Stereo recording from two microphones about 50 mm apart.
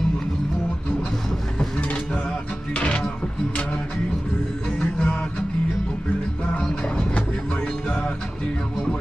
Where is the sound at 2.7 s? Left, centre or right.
Left.